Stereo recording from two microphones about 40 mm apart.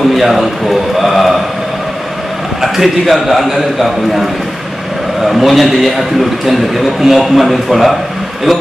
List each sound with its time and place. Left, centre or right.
0.1 s a man's voice: centre
0.9 s mantra: centre
2.6 s a man's voice: centre